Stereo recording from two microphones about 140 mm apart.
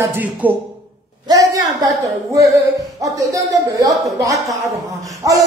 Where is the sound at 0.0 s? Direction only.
15° right (ahead or behind).